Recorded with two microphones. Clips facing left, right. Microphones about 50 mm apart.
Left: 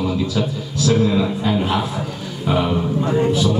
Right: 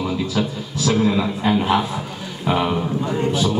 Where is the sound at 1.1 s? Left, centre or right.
Centre.